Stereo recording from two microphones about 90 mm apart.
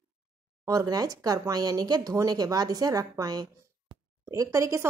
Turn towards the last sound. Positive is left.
turn(degrees=-35)  # may be behind; listen again after turning